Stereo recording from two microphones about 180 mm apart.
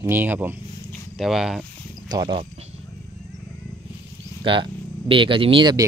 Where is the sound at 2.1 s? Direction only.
25° right (ahead or behind).